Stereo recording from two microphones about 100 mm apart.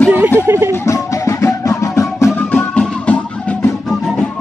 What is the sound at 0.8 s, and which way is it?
Music, 35° left (ahead or behind).